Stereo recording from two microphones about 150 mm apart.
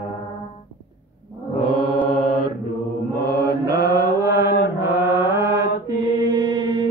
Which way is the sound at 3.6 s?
25° right (ahead or behind).